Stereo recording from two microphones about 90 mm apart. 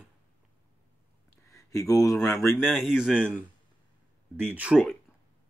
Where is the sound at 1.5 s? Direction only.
35° left (ahead or behind).